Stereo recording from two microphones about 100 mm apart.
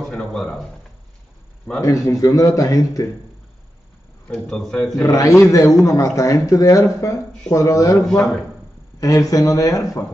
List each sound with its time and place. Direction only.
0.0 s a sound: 5° left (ahead or behind)
1.8 s a man's voice: 35° left (ahead or behind)
4.3 s a man's voice: 5° left (ahead or behind)
5.0 s a man's voice: 35° left (ahead or behind)
9.0 s a man's voice: 35° left (ahead or behind)